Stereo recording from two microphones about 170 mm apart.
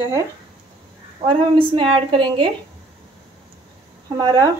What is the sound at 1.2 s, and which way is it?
A woman's voice, 30° right (ahead or behind).